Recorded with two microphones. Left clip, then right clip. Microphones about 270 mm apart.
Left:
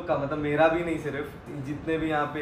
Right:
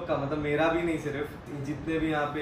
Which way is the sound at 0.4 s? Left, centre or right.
Centre.